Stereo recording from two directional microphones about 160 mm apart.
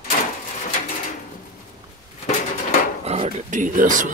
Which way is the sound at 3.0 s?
40° right (ahead or behind).